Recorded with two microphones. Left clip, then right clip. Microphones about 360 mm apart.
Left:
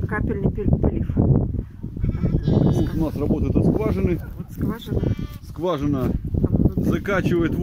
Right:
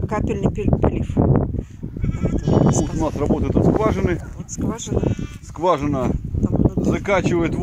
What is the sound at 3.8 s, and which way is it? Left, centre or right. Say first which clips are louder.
Speech: right 4 dB; centre.